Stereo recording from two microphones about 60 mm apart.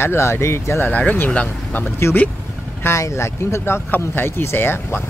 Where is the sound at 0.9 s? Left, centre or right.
Left.